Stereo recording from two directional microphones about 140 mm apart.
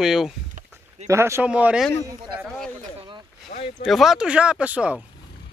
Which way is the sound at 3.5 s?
70° left (ahead or behind).